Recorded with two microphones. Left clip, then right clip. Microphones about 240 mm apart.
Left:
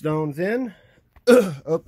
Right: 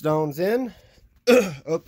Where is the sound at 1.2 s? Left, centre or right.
Centre.